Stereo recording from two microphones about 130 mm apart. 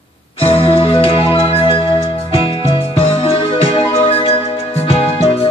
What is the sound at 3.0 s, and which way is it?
Music, 45° left (ahead or behind).